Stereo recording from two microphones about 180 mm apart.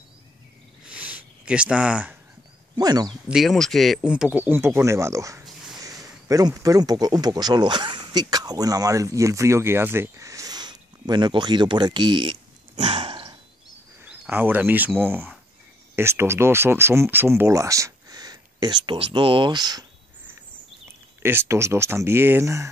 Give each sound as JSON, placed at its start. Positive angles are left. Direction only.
{"t": 0.8, "sound": "a sound", "side_deg": -5}
{"t": 2.7, "sound": "speech", "side_deg": -20}
{"t": 3.3, "sound": "speech", "side_deg": 0}
{"t": 14.0, "sound": "speech", "side_deg": -10}
{"t": 21.2, "sound": "speech", "side_deg": -15}